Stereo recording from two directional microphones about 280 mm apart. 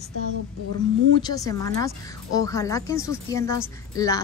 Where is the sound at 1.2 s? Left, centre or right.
Centre.